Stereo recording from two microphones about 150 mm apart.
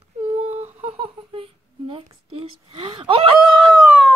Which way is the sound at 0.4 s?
45° right (ahead or behind).